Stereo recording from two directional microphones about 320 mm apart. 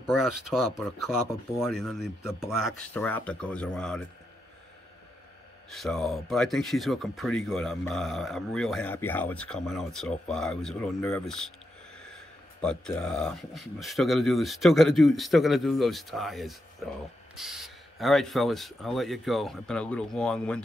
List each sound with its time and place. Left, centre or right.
0.5 s speech: centre
5.7 s speech: centre
12.6 s speech: centre